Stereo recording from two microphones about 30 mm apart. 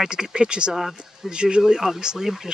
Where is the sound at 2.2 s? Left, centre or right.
Centre.